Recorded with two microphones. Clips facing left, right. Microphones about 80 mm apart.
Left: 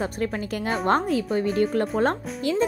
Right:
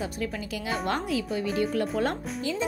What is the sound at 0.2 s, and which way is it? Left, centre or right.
Speech, left.